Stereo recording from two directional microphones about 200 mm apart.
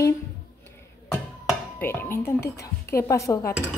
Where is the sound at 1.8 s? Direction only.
10° left (ahead or behind).